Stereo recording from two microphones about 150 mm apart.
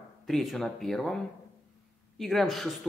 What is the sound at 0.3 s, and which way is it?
Speech, centre (ahead or behind).